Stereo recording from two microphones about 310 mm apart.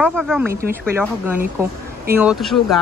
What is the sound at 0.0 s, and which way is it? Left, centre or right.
Speech, centre.